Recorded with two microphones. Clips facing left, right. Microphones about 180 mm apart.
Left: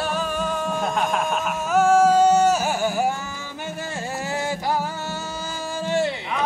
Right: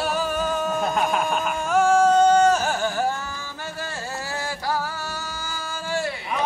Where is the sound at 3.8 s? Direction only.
20° left (ahead or behind).